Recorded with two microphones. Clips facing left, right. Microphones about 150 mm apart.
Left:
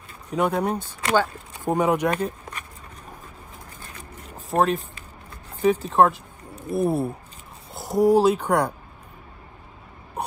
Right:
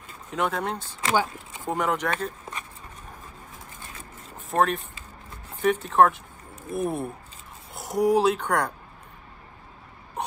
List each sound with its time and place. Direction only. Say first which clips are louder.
0.3 s speech: left 5 dB; 10° left (ahead or behind)
4.5 s speech: left 2 dB; centre (ahead or behind)
6.1 s a sound: left 4 dB; 35° left (ahead or behind)
7.7 s speech: left 4 dB; centre (ahead or behind)